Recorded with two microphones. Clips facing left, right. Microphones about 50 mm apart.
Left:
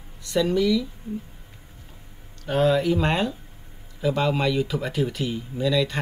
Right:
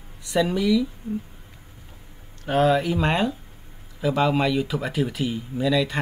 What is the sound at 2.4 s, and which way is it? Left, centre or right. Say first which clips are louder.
Speech: right 1 dB; centre.